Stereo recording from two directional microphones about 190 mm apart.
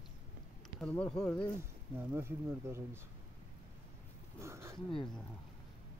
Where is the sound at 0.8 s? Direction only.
5° left (ahead or behind).